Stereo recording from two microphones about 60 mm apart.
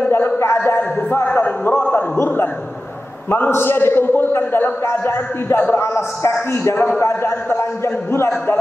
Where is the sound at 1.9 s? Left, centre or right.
Left.